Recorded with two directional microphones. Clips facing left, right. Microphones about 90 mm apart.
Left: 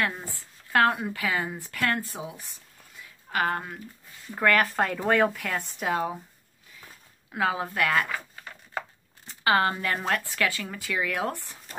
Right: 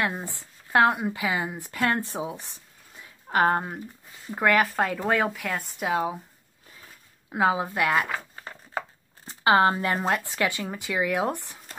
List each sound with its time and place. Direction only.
0.0 s speech: 20° right (ahead or behind)
3.0 s a sound: 25° right (ahead or behind)
4.3 s speech: 15° right (ahead or behind)
4.6 s speech: centre (ahead or behind)
7.2 s speech: 20° right (ahead or behind)
9.4 s speech: 25° right (ahead or behind)